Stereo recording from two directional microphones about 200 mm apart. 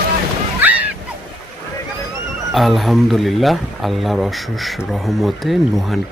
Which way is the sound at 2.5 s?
Centre (ahead or behind).